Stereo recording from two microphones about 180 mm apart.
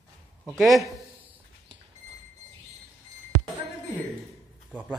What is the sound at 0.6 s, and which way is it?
Speech, centre (ahead or behind).